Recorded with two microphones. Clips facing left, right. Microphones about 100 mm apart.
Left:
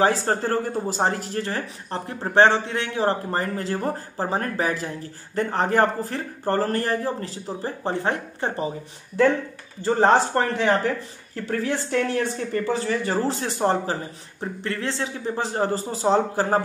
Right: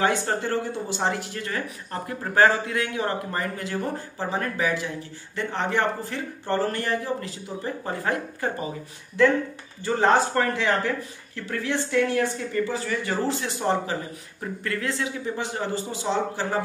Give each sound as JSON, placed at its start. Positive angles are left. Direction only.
{"t": 0.0, "sound": "speech", "side_deg": 35}
{"t": 9.8, "sound": "speech", "side_deg": 35}